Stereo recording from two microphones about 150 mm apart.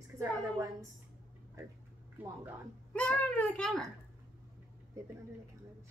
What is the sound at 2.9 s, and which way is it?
A child's voice, 5° left (ahead or behind).